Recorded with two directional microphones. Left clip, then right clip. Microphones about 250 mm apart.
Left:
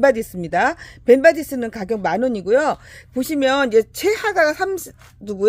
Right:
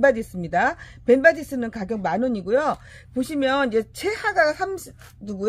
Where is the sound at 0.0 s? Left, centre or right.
Left.